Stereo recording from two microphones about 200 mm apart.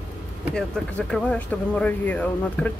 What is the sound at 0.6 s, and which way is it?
Speech, 5° left (ahead or behind).